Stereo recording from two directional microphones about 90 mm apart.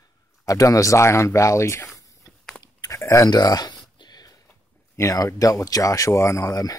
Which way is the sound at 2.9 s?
35° left (ahead or behind).